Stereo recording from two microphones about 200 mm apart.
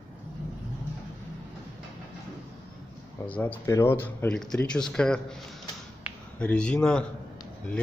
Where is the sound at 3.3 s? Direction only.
10° left (ahead or behind).